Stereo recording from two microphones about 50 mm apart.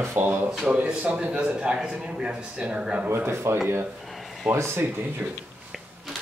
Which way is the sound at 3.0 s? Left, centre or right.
Right.